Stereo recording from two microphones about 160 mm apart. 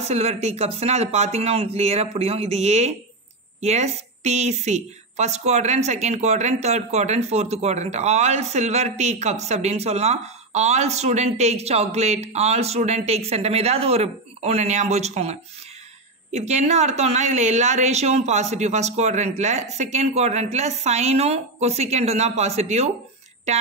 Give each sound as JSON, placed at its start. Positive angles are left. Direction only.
{"t": 0.1, "sound": "a woman's voice", "side_deg": -40}
{"t": 16.3, "sound": "a woman's voice", "side_deg": -45}